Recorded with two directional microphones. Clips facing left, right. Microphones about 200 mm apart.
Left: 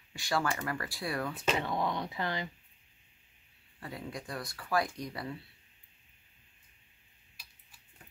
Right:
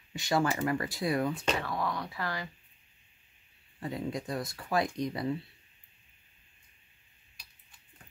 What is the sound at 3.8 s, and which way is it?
Speech, 20° right (ahead or behind).